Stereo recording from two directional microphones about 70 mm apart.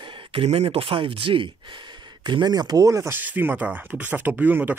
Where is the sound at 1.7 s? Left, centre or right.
Right.